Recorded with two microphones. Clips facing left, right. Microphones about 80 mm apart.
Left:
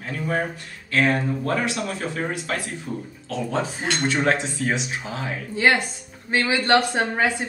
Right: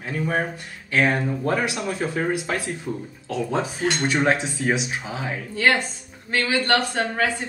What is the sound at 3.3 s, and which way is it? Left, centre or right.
Speech, centre.